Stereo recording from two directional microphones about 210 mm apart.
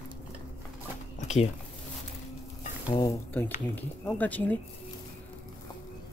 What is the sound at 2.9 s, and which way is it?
Speech, 20° left (ahead or behind).